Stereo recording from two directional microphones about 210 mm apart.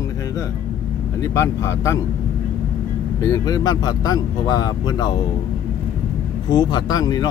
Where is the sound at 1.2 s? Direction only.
15° left (ahead or behind).